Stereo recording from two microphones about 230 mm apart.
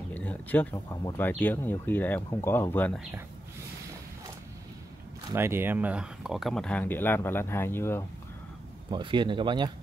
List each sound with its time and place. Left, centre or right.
0.1 s speech: centre
5.3 s speech: centre
8.9 s speech: centre